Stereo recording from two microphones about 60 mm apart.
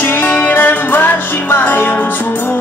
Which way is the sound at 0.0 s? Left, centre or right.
Left.